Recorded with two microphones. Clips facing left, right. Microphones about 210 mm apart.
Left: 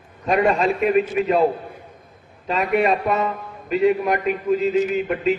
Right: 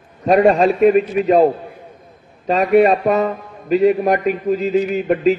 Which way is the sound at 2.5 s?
40° right (ahead or behind).